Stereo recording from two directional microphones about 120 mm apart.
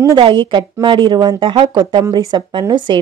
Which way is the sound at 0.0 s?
35° right (ahead or behind).